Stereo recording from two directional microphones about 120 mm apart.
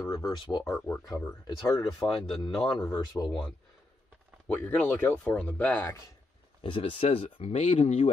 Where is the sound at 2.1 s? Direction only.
45° left (ahead or behind).